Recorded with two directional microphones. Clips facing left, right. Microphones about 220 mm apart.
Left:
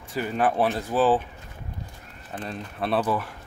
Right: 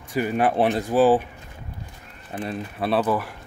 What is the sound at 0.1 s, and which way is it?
Speech, 10° right (ahead or behind).